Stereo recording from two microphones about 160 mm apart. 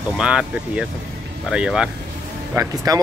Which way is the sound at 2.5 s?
20° right (ahead or behind).